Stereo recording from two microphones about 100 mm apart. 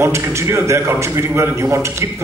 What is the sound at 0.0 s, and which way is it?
A man's voice, 25° right (ahead or behind).